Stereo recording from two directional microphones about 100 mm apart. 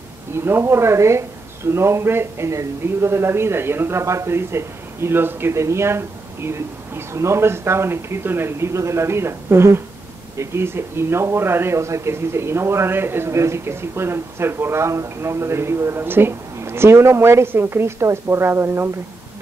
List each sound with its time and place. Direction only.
0.4 s speech: 25° right (ahead or behind)